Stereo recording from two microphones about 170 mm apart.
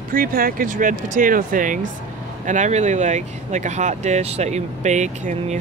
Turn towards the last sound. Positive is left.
turn(degrees=-45)  # may be behind; listen again after turning